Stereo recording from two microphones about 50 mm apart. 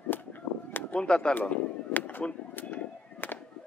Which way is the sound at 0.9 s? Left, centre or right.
Centre.